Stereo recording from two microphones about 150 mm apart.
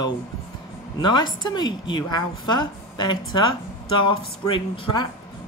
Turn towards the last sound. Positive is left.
turn(degrees=35)  # may be behind; listen again after turning